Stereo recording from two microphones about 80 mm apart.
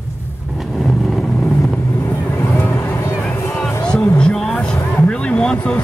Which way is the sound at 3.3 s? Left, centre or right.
Left.